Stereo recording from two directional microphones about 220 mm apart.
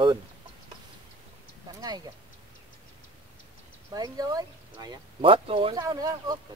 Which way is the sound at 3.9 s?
15° right (ahead or behind).